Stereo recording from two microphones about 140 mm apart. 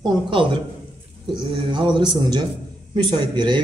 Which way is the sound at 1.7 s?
35° right (ahead or behind).